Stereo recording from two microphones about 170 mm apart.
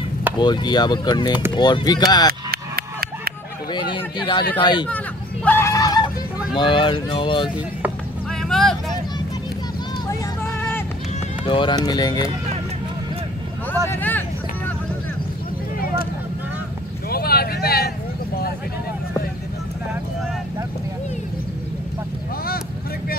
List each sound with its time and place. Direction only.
0.4 s speech: 25° left (ahead or behind)
2.5 s a sound: 65° right (ahead or behind)
3.7 s speech: 30° left (ahead or behind)
4.8 s hubbub: 10° left (ahead or behind)
6.5 s speech: 30° left (ahead or behind)
8.3 s vehicle: 5° left (ahead or behind)
10.0 s music: 15° left (ahead or behind)
11.4 s speech: 30° left (ahead or behind)
13.8 s speech: 10° left (ahead or behind)
17.1 s a sound: 65° left (ahead or behind)